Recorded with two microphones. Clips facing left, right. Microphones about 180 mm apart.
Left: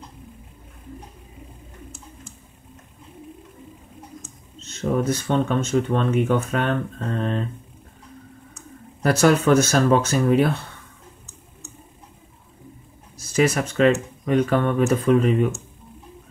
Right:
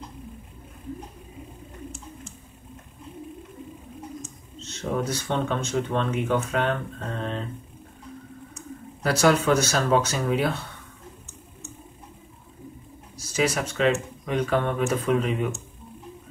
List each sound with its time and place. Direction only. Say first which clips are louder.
5.0 s speech: left 5 dB; 50° left (ahead or behind)
9.0 s speech: left 3 dB; 50° left (ahead or behind)
13.4 s speech: left 5 dB; 50° left (ahead or behind)